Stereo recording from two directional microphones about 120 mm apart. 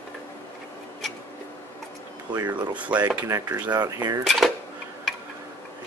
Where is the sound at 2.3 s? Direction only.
25° right (ahead or behind).